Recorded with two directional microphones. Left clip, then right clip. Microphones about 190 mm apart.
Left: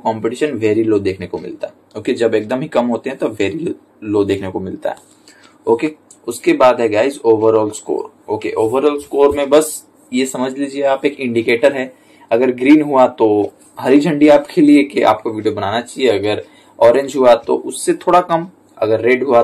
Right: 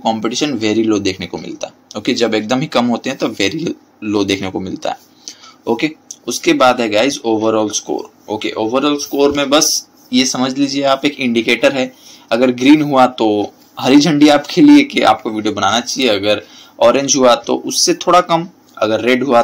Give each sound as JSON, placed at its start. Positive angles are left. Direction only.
{"t": 0.0, "sound": "speech", "side_deg": -35}